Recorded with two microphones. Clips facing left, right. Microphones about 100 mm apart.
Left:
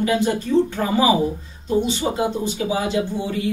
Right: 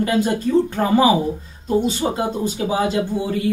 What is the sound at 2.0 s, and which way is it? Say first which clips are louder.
Speech: right 1 dB; 30° right (ahead or behind).